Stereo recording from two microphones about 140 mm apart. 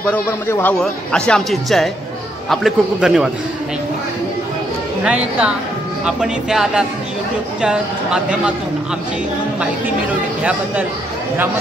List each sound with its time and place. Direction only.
0.0 s a man's voice: 15° left (ahead or behind); by 3.3 s 5° right (ahead or behind)
5.0 s speech: 5° right (ahead or behind)